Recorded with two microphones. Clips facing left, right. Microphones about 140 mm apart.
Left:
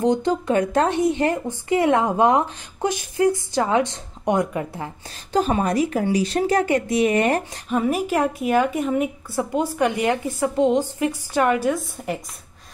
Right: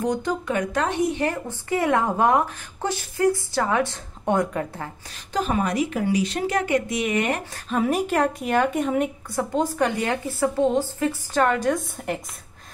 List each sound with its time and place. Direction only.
0.0 s speech: 25° left (ahead or behind)
5.1 s speech: 35° left (ahead or behind)
7.7 s a woman's voice: centre (ahead or behind)